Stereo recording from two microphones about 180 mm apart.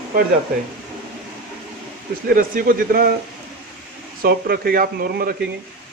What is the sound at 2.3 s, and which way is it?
Speech, 55° right (ahead or behind).